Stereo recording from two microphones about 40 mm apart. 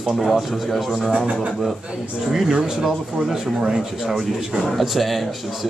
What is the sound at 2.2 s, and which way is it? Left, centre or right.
Speech, centre.